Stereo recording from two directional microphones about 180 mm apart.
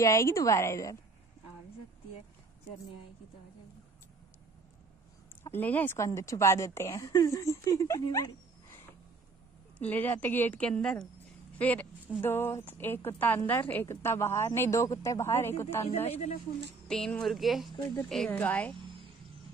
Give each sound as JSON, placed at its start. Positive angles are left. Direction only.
{"t": 0.0, "sound": "a woman's voice", "side_deg": 15}
{"t": 5.4, "sound": "a woman's voice", "side_deg": 10}
{"t": 16.1, "sound": "a woman's voice", "side_deg": 35}
{"t": 16.8, "sound": "a woman's voice", "side_deg": 5}